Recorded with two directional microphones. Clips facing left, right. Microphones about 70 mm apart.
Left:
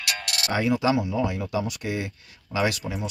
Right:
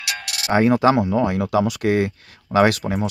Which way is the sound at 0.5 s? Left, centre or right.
Right.